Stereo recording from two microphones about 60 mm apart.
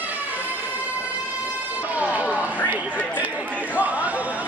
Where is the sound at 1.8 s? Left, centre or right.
Right.